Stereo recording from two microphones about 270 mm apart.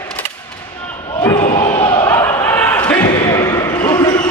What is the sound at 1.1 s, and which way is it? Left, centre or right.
Slam, centre.